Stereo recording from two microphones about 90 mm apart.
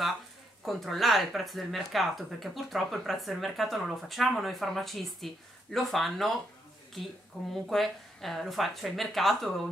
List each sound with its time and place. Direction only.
0.7 s speech: centre (ahead or behind)
7.5 s speech: centre (ahead or behind)